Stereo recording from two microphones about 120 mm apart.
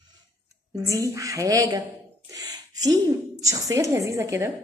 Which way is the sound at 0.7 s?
25° right (ahead or behind).